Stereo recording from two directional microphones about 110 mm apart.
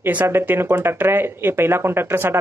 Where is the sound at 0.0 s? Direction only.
15° right (ahead or behind).